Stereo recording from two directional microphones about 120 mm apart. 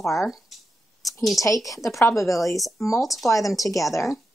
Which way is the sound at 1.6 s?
25° left (ahead or behind).